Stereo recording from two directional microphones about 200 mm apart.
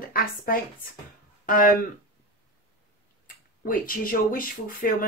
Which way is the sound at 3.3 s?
45° left (ahead or behind).